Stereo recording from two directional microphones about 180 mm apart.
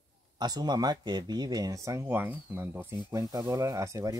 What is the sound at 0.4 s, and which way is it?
Speech, 25° right (ahead or behind).